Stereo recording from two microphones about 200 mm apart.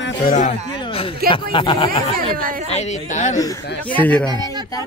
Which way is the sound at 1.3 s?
25° left (ahead or behind).